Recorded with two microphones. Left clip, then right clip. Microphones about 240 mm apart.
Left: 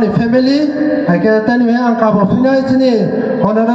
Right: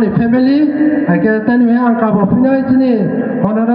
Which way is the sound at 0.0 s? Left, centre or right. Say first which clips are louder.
Left 1 dB; left.